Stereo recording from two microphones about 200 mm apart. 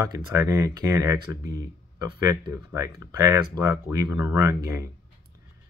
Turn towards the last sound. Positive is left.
turn(degrees=-15)  # may be behind; listen again after turning